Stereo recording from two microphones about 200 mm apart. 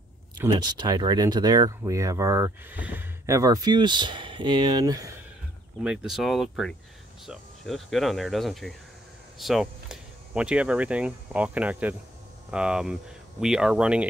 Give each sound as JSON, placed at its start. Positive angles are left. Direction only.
{"t": 0.5, "sound": "speech", "side_deg": -20}
{"t": 5.9, "sound": "speech", "side_deg": 0}